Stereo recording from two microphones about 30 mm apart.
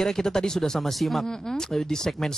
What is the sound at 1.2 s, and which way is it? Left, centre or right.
A woman's voice, centre.